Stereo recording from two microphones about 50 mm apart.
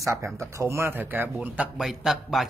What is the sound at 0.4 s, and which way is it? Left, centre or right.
Speech, right.